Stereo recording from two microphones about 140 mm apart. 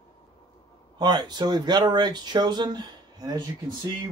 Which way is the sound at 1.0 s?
30° right (ahead or behind).